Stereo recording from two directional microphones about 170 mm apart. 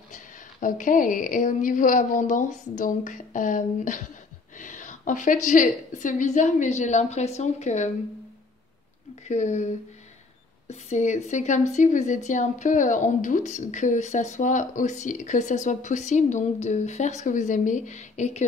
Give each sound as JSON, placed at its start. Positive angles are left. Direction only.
{"t": 0.1, "sound": "a woman's voice", "side_deg": 50}
{"t": 9.3, "sound": "a woman's voice", "side_deg": 45}